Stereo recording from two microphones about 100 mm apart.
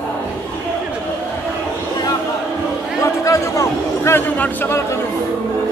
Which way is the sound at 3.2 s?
30° left (ahead or behind).